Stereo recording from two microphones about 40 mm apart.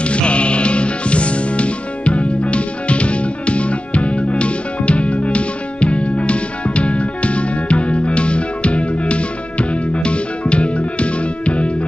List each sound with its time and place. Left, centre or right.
0.0 s music: left